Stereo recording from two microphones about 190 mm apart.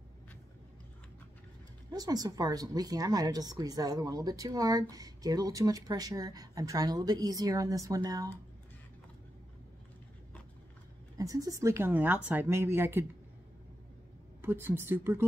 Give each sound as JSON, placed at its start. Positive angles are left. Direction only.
{"t": 1.9, "sound": "speech", "side_deg": -20}
{"t": 11.1, "sound": "speech", "side_deg": -15}
{"t": 14.4, "sound": "speech", "side_deg": -10}